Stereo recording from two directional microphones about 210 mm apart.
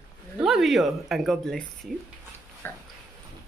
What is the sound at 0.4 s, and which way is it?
Speech, centre (ahead or behind).